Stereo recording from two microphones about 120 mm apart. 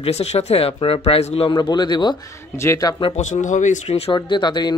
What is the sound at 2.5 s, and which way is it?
Speech, 25° left (ahead or behind).